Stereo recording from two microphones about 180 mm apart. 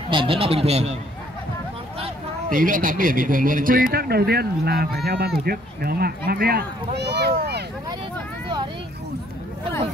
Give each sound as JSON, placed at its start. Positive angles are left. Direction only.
{"t": 0.1, "sound": "speech", "side_deg": -30}
{"t": 2.5, "sound": "speech", "side_deg": -50}